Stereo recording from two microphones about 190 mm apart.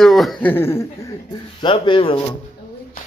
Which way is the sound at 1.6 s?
25° left (ahead or behind).